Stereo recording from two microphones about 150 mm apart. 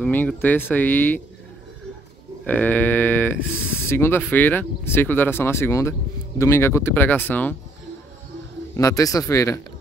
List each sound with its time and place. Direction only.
0.0 s speech: 10° left (ahead or behind)
2.4 s speech: 10° left (ahead or behind)
8.7 s speech: 20° left (ahead or behind)